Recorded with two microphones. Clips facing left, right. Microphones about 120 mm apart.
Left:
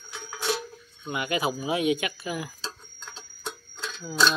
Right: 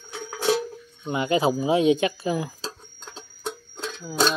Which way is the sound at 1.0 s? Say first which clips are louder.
Right 6 dB; 30° right (ahead or behind).